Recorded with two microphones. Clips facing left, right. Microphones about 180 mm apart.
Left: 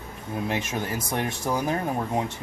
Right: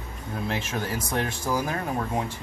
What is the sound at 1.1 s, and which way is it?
Speech, 20° left (ahead or behind).